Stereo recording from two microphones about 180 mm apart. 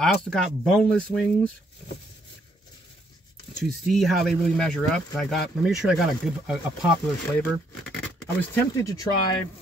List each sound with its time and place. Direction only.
0.0 s speech: 5° left (ahead or behind)
3.6 s speech: centre (ahead or behind)
8.4 s speech: 20° left (ahead or behind)